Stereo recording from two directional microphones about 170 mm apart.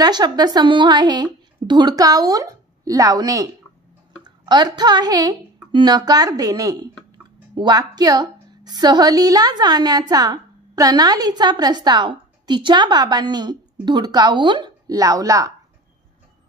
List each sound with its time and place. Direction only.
0.0 s a woman's voice: 25° right (ahead or behind)